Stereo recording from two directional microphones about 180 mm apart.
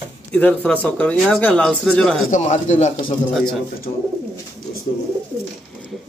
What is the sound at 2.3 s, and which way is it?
Speech, 40° left (ahead or behind).